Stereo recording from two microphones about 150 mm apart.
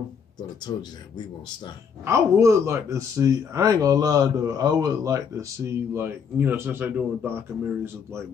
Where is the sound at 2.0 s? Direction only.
20° right (ahead or behind).